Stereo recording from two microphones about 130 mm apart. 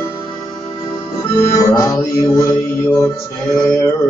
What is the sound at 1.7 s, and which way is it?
Mantra, 25° left (ahead or behind).